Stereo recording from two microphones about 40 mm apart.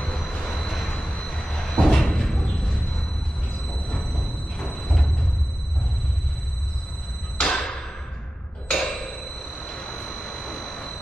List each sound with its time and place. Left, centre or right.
0.0 s vehicle: left
1.0 s a sound: centre
4.6 s music: left
7.3 s music: centre
8.6 s a sound: centre
9.7 s vehicle: centre